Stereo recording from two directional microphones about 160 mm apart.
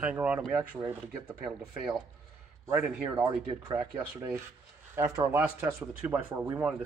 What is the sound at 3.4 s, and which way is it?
Speech, 25° right (ahead or behind).